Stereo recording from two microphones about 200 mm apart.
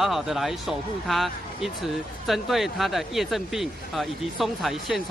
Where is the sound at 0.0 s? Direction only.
Centre (ahead or behind).